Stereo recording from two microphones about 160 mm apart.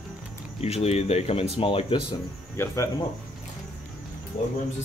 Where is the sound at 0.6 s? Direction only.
40° left (ahead or behind).